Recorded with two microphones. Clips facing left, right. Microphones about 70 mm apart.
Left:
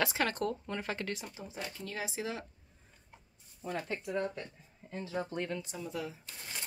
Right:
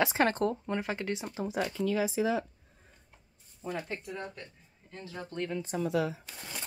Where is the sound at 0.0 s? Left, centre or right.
Right.